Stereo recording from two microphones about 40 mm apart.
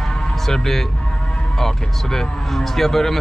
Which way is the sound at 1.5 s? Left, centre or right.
Centre.